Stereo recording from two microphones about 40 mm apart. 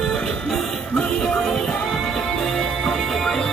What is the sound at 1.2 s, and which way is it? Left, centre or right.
Music, centre.